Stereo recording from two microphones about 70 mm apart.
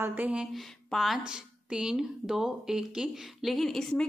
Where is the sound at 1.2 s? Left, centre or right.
Centre.